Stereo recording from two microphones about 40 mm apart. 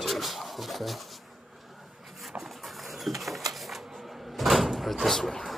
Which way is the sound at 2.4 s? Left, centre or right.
Centre.